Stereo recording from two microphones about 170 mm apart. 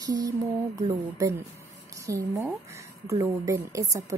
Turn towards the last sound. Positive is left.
turn(degrees=-20)  # may be behind; listen again after turning